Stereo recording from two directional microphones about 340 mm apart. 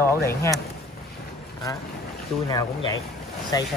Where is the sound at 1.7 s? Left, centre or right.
Centre.